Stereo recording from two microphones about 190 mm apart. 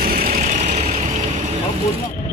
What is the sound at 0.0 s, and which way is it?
Vehicle, 50° right (ahead or behind).